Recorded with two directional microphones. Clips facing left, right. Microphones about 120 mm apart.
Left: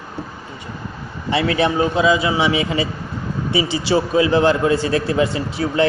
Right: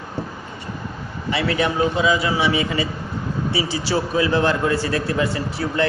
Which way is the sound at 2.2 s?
20° left (ahead or behind).